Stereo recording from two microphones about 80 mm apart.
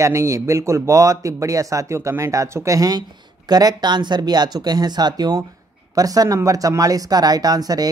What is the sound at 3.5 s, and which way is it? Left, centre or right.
Speech, right.